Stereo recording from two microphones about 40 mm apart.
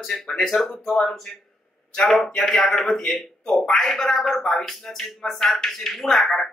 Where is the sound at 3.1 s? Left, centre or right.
Centre.